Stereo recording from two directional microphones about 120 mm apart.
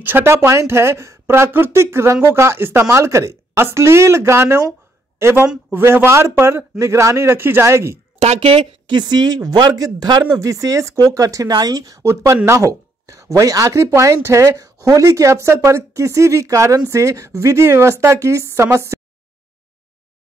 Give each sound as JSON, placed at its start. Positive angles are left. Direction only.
{"t": 0.0, "sound": "speech", "side_deg": -20}
{"t": 8.2, "sound": "speech", "side_deg": -55}